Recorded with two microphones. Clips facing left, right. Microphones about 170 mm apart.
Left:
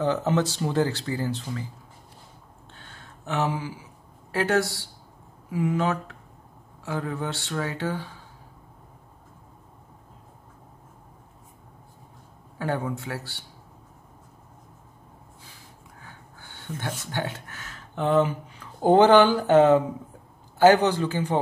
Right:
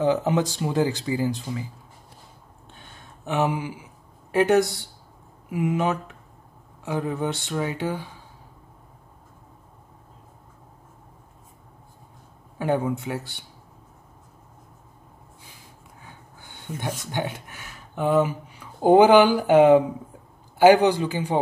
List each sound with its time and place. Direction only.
0.0 s speech: 15° right (ahead or behind)
2.7 s a sound: 15° right (ahead or behind)
4.3 s speech: 15° right (ahead or behind)
12.5 s speech: 15° right (ahead or behind)
16.1 s speech: 15° right (ahead or behind)